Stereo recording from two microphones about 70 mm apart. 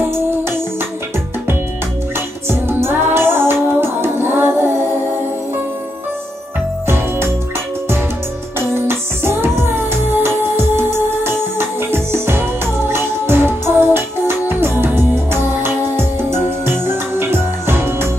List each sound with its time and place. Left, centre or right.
0.4 s music: right
2.1 s music: right
8.5 s music: right